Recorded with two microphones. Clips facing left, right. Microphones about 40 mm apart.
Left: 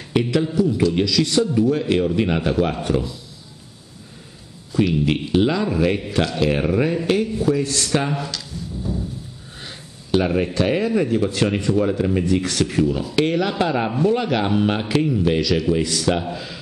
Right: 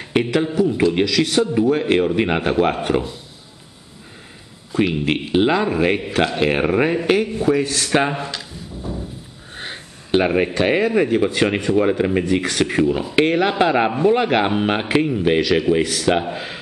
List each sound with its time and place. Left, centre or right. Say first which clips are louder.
0.1 s a man's voice: right 1 dB; right
4.7 s a man's voice: even; right